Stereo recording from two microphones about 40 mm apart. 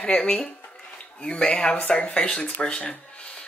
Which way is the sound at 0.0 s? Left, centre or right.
Left.